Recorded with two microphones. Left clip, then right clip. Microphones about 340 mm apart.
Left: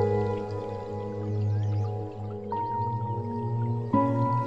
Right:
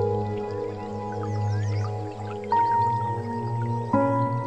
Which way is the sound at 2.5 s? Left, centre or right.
Right.